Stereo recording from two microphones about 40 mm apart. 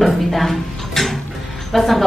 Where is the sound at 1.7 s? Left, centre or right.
Centre.